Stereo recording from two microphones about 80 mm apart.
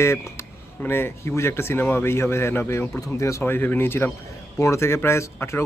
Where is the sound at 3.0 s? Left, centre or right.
Left.